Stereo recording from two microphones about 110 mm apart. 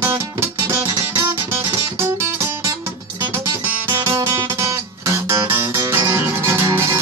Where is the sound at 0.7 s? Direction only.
20° right (ahead or behind).